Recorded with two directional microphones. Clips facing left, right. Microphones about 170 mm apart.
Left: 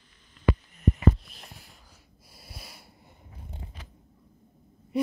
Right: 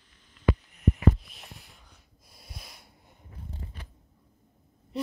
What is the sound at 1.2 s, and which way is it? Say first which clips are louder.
Wheeze: even; centre (ahead or behind).